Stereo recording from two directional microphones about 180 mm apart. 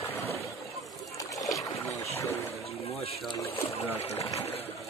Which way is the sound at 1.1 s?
20° left (ahead or behind).